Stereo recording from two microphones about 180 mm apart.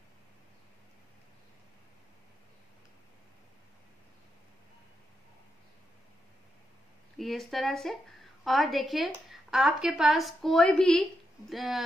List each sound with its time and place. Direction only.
7.2 s a woman's voice: centre (ahead or behind)